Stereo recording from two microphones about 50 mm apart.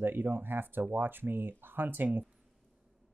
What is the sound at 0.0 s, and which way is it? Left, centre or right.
Speech, right.